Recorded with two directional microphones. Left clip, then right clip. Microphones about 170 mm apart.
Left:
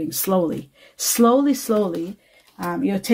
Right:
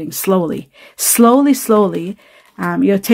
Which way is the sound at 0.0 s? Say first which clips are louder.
Right 5 dB; 35° right (ahead or behind).